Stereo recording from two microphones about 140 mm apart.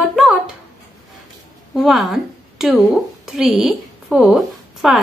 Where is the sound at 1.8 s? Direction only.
Centre (ahead or behind).